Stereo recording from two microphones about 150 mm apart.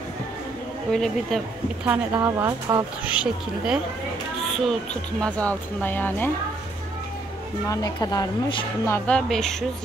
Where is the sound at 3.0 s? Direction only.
5° right (ahead or behind); by 6.3 s 10° left (ahead or behind).